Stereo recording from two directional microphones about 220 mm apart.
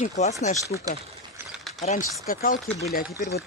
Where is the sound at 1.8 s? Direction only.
35° left (ahead or behind).